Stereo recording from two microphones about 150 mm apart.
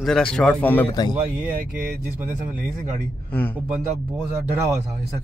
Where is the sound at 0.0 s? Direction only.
5° left (ahead or behind).